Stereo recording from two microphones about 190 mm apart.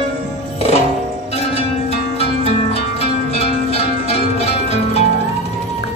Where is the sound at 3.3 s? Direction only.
35° left (ahead or behind).